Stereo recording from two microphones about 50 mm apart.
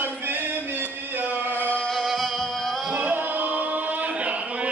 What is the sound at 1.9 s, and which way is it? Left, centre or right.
Music, centre.